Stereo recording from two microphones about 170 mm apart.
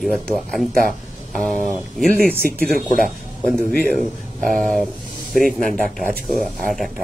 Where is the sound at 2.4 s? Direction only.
60° right (ahead or behind).